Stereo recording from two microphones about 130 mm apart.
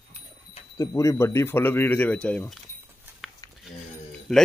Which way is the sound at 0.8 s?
25° left (ahead or behind).